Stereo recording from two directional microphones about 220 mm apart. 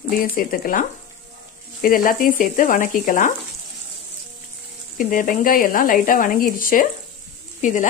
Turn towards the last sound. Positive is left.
turn(degrees=35)  # may be behind; listen again after turning